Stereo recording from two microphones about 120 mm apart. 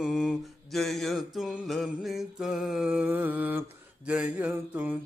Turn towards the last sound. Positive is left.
turn(degrees=-10)  # may be behind; listen again after turning